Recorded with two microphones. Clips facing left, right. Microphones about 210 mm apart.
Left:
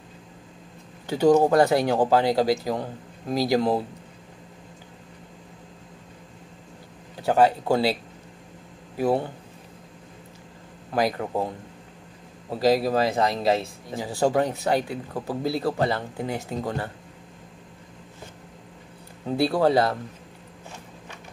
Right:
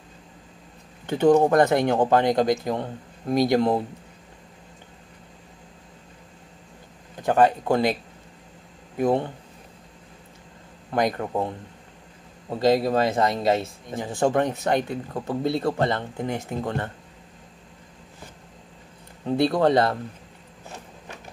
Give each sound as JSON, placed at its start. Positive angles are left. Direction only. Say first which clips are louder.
{"t": 1.0, "sound": "speech", "louder": "right 1 dB", "side_deg": 10}
{"t": 7.2, "sound": "speech", "louder": "even", "side_deg": 10}
{"t": 9.0, "sound": "speech", "louder": "right 1 dB", "side_deg": 5}
{"t": 11.0, "sound": "speech", "louder": "right 1 dB", "side_deg": 5}
{"t": 19.4, "sound": "speech", "louder": "right 1 dB", "side_deg": 5}